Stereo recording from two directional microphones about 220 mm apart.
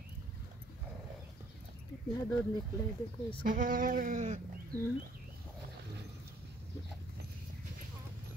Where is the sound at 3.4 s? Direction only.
35° right (ahead or behind).